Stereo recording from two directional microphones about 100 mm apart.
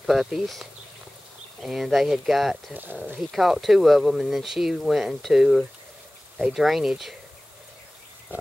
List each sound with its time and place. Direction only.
0.0 s speech: centre (ahead or behind)
2.7 s speech: 20° right (ahead or behind)
3.2 s speech: 5° right (ahead or behind)